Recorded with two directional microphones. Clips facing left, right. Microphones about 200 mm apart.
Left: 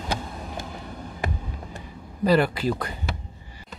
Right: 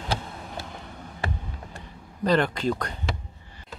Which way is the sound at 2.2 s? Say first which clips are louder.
Left 2 dB; 5° left (ahead or behind).